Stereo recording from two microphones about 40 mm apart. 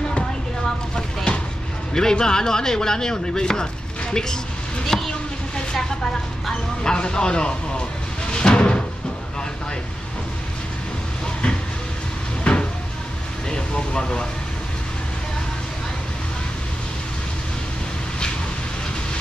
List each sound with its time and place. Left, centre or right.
0.9 s a sound: left
2.0 s speech: centre
4.8 s a sound: centre
6.8 s speech: left
8.3 s music: left
12.5 s cupboard open or close: left
13.5 s speech: left